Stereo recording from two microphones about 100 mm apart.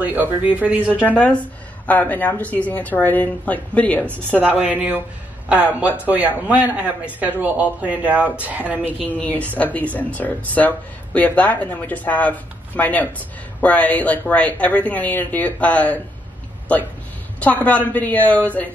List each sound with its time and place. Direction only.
0.0 s speech: 15° right (ahead or behind)
1.0 s speech: 15° left (ahead or behind)
4.5 s speech: 15° right (ahead or behind)
9.0 s speech: 15° left (ahead or behind)
17.4 s speech: 15° left (ahead or behind)